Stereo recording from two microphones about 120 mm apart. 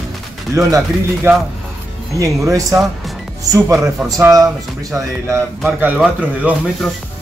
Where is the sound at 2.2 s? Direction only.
25° right (ahead or behind).